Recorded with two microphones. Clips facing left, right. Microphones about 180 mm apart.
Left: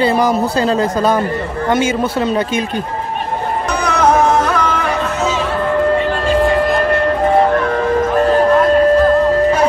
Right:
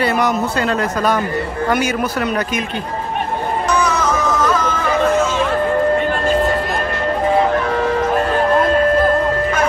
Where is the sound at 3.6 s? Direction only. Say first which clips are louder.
Left 4 dB; 60° left (ahead or behind).